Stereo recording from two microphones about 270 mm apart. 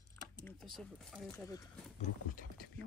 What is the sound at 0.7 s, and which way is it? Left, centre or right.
Speech, centre.